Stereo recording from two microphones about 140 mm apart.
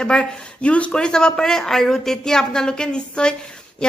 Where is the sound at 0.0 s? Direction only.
5° left (ahead or behind).